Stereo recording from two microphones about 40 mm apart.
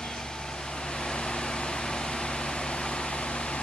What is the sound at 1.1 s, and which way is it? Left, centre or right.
Vehicle, left.